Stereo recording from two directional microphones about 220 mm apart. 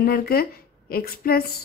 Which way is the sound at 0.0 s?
45° left (ahead or behind).